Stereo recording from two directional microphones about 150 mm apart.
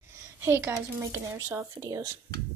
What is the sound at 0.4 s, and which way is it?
Speech, 15° right (ahead or behind).